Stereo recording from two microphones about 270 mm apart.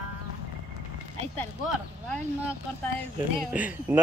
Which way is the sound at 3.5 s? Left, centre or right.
Centre.